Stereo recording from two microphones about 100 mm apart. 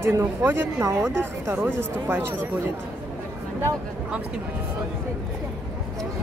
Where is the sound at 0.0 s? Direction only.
25° right (ahead or behind).